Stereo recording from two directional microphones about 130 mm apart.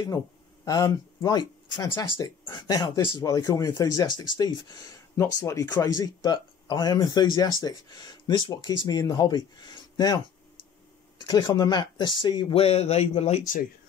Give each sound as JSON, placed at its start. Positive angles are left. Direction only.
{"t": 0.7, "sound": "speech", "side_deg": 30}
{"t": 12.5, "sound": "speech", "side_deg": 50}